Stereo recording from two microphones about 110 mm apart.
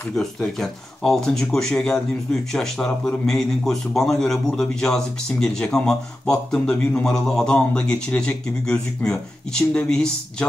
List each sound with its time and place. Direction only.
0.1 s speech: 5° left (ahead or behind)